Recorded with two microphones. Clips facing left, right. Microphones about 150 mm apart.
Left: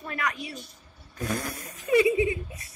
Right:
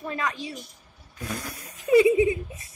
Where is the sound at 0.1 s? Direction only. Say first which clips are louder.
Even; 20° right (ahead or behind).